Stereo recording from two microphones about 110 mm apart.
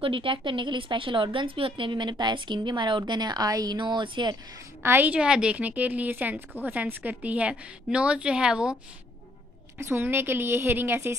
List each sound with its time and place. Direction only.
0.0 s a woman's voice: 50° right (ahead or behind)
4.8 s a woman's voice: 15° right (ahead or behind)
9.8 s a woman's voice: 20° right (ahead or behind)